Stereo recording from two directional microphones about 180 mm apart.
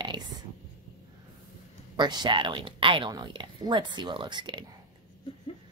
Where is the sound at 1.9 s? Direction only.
25° right (ahead or behind).